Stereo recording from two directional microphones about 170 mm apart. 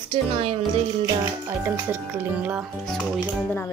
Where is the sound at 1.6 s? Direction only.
10° right (ahead or behind).